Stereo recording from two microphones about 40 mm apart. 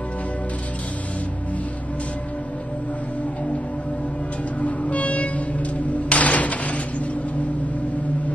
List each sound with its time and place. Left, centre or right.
4.6 s music: left